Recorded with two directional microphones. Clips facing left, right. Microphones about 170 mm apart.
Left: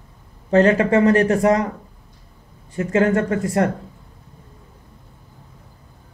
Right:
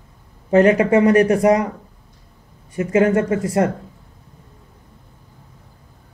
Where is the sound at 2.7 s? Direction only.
20° right (ahead or behind).